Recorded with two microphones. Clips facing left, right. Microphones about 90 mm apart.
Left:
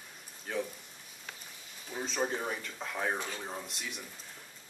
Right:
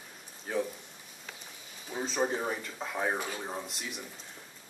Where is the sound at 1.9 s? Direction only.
5° right (ahead or behind).